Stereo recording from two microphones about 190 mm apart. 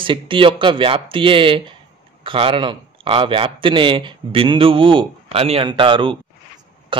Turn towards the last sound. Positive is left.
turn(degrees=-25)  # may be behind; listen again after turning